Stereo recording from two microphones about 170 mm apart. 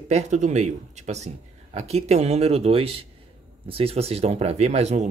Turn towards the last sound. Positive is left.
turn(degrees=-40)  # may be behind; listen again after turning